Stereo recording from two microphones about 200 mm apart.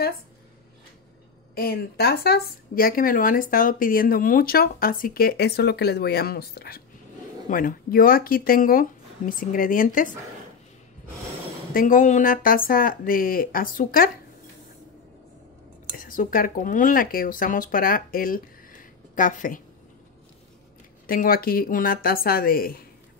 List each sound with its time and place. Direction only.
1.5 s speech: 50° left (ahead or behind)
11.7 s speech: 40° left (ahead or behind)
16.0 s speech: 45° left (ahead or behind)
21.1 s speech: 45° left (ahead or behind)